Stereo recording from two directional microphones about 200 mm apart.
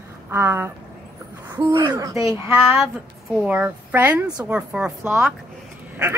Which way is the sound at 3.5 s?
10° right (ahead or behind).